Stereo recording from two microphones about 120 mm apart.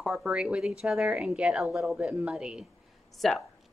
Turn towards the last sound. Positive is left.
turn(degrees=0)  # may be behind; listen again after turning